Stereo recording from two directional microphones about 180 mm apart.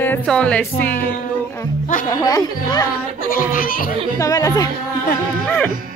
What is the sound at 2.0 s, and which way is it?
Speech, 20° left (ahead or behind).